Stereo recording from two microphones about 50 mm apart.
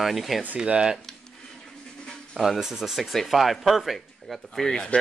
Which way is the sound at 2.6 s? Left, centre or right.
Centre.